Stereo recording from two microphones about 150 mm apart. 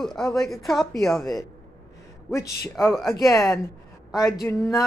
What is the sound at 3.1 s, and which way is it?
A woman's voice, 20° left (ahead or behind).